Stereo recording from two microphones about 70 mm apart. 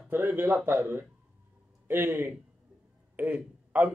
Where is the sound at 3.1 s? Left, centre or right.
Right.